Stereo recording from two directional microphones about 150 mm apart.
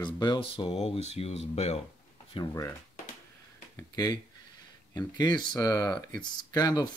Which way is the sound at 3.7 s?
25° left (ahead or behind).